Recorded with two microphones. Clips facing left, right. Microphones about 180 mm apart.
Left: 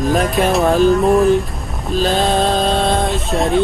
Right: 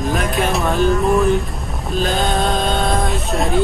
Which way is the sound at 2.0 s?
30° left (ahead or behind).